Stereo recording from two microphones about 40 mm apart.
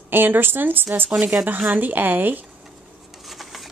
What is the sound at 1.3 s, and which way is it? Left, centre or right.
Speech, right.